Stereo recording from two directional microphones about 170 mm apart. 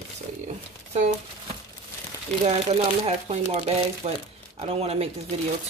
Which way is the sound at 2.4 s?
40° right (ahead or behind).